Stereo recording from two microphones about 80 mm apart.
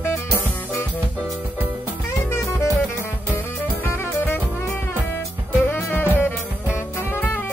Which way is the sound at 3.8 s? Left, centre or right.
Left.